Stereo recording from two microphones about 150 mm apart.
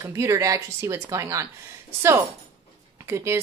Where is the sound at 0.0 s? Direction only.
20° right (ahead or behind).